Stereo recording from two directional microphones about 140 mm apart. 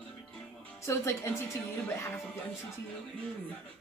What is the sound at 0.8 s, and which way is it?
Speech, 20° left (ahead or behind).